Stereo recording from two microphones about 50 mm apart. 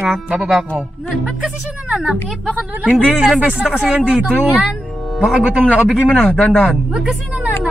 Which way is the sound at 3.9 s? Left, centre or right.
Centre.